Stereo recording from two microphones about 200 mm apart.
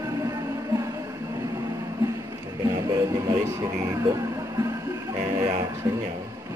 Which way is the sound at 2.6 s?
15° right (ahead or behind).